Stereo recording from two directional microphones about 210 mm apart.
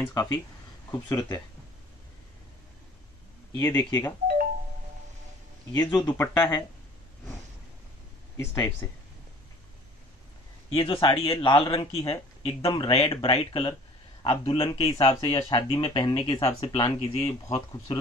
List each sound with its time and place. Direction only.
0.0 s speech: 15° left (ahead or behind)
3.5 s speech: 10° left (ahead or behind)
5.7 s speech: 20° left (ahead or behind)
8.4 s speech: 10° left (ahead or behind)
10.7 s speech: 25° left (ahead or behind)